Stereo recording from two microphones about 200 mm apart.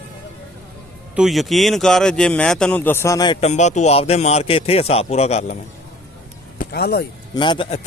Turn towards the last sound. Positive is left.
turn(degrees=30)  # may be behind; listen again after turning